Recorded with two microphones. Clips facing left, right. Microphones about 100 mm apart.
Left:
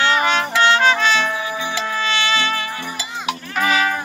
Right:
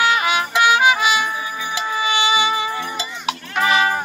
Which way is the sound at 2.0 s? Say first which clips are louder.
Right 3 dB; 15° right (ahead or behind).